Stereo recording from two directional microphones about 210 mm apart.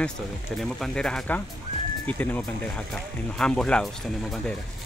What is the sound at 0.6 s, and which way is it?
Speech, centre (ahead or behind).